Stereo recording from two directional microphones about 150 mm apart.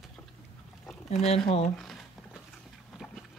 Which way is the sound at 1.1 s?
45° left (ahead or behind).